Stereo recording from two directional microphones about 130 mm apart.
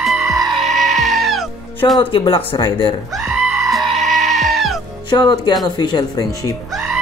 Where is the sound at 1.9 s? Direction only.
40° left (ahead or behind).